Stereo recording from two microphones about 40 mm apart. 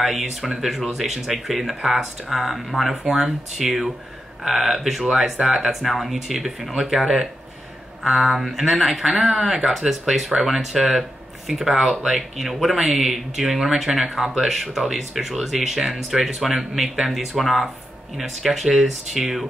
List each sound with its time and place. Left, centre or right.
0.0 s speech: centre
5.4 s speech: centre
5.7 s speech: centre